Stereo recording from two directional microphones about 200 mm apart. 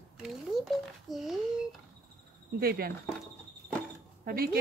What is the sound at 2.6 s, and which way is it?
Speech, 50° right (ahead or behind).